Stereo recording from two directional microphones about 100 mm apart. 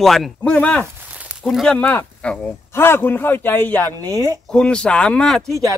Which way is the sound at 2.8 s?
20° left (ahead or behind).